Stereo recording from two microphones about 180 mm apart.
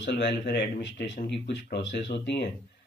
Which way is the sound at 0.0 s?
70° left (ahead or behind).